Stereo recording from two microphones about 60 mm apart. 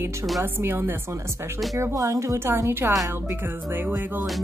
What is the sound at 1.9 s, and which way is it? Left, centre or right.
Speech, right.